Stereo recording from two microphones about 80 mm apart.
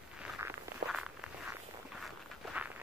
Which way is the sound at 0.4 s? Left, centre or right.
Right.